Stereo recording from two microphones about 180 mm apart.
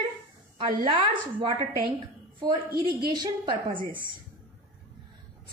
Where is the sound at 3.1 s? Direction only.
25° right (ahead or behind).